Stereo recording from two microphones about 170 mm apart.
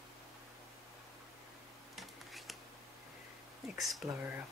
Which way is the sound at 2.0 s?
Centre (ahead or behind).